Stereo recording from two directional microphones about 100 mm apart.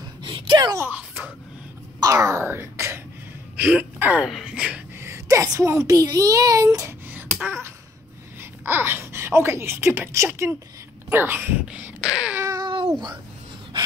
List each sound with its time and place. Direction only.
0.2 s a sound: 55° right (ahead or behind)
0.7 s speech: 20° right (ahead or behind)
2.0 s speech: 30° right (ahead or behind); by 4.8 s 10° right (ahead or behind)
4.9 s a child's voice: 25° right (ahead or behind)
11.6 s a sound: 10° right (ahead or behind)
12.5 s cat: 55° right (ahead or behind)